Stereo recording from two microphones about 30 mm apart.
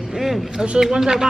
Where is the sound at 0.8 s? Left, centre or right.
Centre.